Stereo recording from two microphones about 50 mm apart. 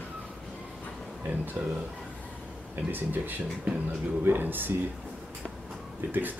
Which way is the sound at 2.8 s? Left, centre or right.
Right.